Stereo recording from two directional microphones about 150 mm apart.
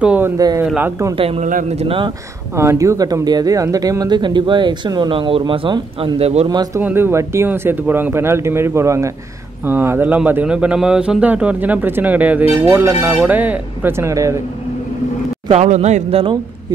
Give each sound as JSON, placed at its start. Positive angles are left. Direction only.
{"t": 0.0, "sound": "a man's voice", "side_deg": -10}
{"t": 1.1, "sound": "speech", "side_deg": -40}
{"t": 1.4, "sound": "speech", "side_deg": -60}
{"t": 1.7, "sound": "speech", "side_deg": -40}
{"t": 2.5, "sound": "speech", "side_deg": -20}
{"t": 6.5, "sound": "speech", "side_deg": -25}
{"t": 6.8, "sound": "a man's voice", "side_deg": -15}
{"t": 15.5, "sound": "speech", "side_deg": -50}